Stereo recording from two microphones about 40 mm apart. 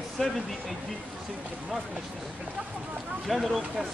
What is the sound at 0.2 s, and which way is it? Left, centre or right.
Speech, centre.